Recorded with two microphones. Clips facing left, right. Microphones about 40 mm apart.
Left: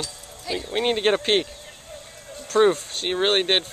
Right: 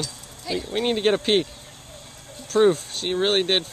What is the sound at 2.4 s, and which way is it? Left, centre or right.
Speech, centre.